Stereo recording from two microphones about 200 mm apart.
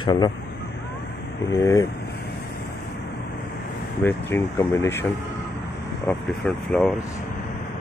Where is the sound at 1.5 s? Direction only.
15° left (ahead or behind).